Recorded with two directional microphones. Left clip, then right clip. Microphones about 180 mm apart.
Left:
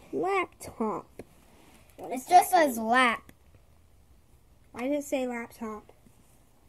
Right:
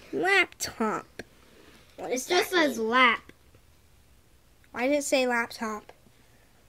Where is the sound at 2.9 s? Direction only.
45° left (ahead or behind).